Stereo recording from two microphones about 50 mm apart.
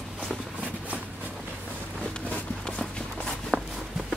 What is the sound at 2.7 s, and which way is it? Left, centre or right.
Walk, centre.